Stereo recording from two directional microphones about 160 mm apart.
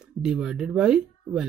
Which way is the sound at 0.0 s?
5° right (ahead or behind).